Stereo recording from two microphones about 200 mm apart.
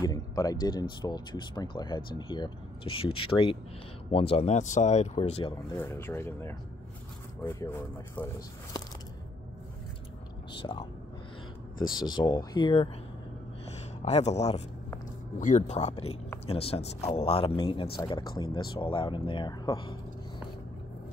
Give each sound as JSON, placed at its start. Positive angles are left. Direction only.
{"t": 0.0, "sound": "speech", "side_deg": 20}
{"t": 5.8, "sound": "speech", "side_deg": 10}
{"t": 10.6, "sound": "speech", "side_deg": 25}
{"t": 12.0, "sound": "speech", "side_deg": 20}
{"t": 14.0, "sound": "speech", "side_deg": 35}